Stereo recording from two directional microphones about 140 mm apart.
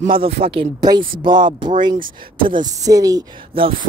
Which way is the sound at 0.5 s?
40° right (ahead or behind).